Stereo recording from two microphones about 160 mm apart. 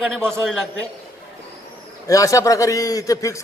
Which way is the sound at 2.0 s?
20° left (ahead or behind).